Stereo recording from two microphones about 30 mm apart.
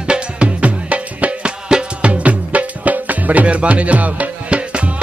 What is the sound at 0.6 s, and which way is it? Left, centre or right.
Music, right.